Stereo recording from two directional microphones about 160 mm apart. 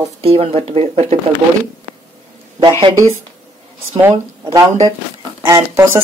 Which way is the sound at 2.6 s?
30° right (ahead or behind).